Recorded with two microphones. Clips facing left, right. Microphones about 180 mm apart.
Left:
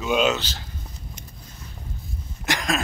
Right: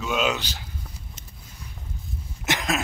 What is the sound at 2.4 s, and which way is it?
Cough, 20° right (ahead or behind).